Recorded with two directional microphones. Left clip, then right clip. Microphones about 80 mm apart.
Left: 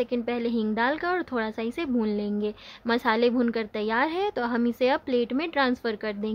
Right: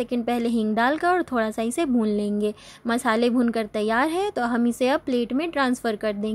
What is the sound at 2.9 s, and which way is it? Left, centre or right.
Speech, right.